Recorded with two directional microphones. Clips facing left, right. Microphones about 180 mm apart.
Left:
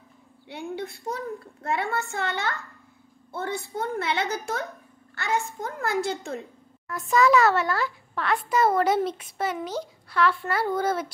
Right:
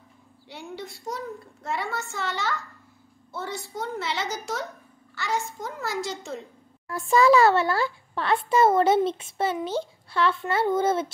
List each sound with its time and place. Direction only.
0.5 s a child's voice: 55° left (ahead or behind)
6.9 s a child's voice: 30° right (ahead or behind)